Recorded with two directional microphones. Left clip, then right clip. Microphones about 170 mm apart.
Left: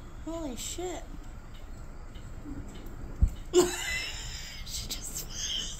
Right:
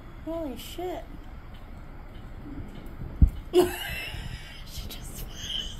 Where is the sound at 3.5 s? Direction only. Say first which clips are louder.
Right 2 dB; 15° left (ahead or behind).